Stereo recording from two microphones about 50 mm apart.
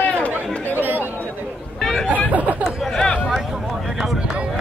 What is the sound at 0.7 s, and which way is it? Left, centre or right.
Chatter, right.